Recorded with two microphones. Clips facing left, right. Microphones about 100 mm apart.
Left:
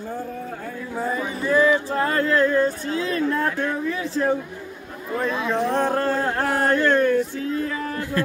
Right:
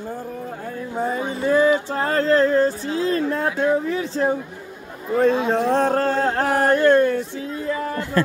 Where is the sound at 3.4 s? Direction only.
20° right (ahead or behind).